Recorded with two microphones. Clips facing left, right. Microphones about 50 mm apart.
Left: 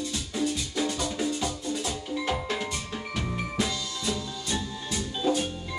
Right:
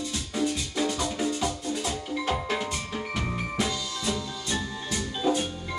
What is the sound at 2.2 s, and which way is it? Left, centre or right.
Music, centre.